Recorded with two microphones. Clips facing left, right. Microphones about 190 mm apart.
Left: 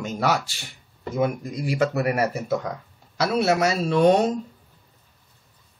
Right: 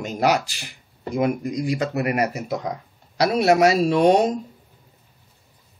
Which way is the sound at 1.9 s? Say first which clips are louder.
Even; 15° right (ahead or behind).